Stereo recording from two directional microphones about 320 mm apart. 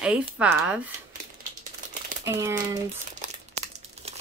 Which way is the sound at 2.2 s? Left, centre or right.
Centre.